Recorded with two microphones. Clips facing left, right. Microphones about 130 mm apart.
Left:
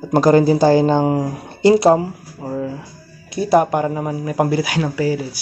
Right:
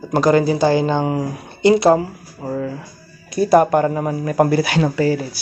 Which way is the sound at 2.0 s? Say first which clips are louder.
Even; 10° left (ahead or behind).